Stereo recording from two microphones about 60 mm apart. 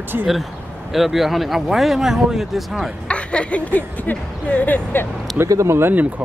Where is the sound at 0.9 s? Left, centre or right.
Centre.